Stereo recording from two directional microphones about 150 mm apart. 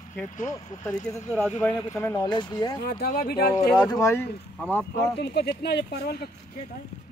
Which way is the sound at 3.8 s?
20° left (ahead or behind).